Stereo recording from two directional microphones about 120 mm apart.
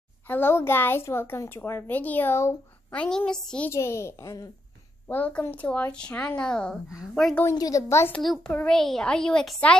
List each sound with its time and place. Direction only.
0.3 s a woman's voice: 20° left (ahead or behind)
2.9 s speech: 10° left (ahead or behind)
3.7 s a woman's voice: 20° left (ahead or behind)
5.0 s a woman's voice: 15° left (ahead or behind)
7.5 s a woman's voice: 30° left (ahead or behind)
8.1 s a woman's voice: 5° left (ahead or behind)